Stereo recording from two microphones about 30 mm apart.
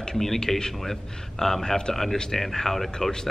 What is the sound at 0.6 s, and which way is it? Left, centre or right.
Speech, left.